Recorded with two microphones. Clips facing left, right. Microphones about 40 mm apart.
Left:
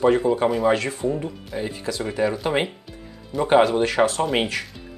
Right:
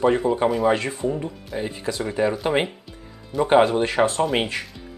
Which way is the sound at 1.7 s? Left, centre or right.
Right.